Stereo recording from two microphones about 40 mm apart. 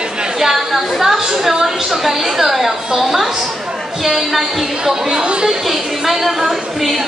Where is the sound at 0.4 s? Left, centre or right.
Centre.